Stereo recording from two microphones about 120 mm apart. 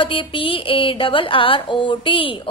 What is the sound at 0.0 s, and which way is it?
Speech, 45° left (ahead or behind).